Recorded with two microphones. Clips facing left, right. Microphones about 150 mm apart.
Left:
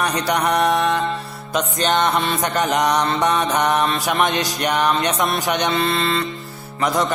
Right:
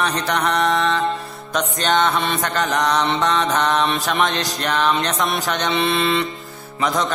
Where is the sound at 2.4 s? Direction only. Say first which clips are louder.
Left 3 dB; 20° left (ahead or behind).